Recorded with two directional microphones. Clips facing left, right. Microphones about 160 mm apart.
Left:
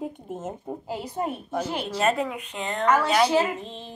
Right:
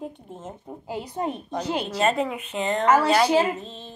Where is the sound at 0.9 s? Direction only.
15° right (ahead or behind).